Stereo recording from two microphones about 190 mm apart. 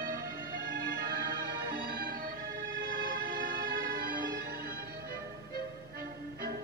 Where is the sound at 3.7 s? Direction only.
50° right (ahead or behind).